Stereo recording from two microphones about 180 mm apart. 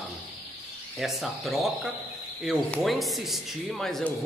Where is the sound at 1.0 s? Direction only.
Centre (ahead or behind).